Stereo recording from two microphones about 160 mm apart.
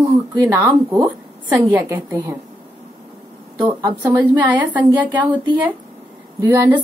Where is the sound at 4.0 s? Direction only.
10° right (ahead or behind).